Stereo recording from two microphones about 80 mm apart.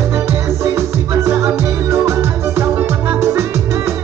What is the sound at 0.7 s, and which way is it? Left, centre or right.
Music, right.